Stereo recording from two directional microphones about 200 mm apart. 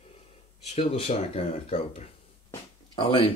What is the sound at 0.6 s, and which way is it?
Speech, 30° left (ahead or behind).